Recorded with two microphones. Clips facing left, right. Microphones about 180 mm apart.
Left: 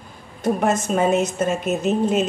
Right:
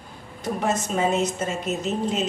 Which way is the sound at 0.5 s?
50° left (ahead or behind).